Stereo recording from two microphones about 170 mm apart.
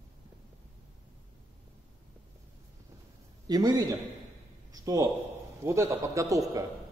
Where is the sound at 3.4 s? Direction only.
25° right (ahead or behind).